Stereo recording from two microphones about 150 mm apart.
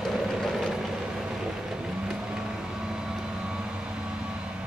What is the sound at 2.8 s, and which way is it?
Vehicle, 5° right (ahead or behind).